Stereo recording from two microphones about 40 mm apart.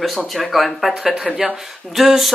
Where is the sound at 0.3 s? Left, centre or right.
Centre.